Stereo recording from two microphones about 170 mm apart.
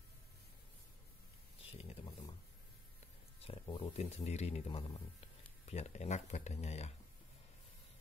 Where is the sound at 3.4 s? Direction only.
35° left (ahead or behind).